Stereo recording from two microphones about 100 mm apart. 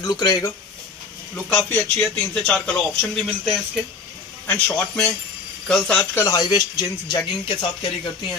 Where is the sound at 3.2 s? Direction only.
Centre (ahead or behind).